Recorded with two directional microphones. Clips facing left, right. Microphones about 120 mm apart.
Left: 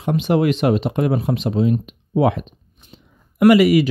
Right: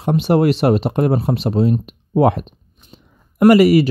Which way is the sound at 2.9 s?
40° right (ahead or behind).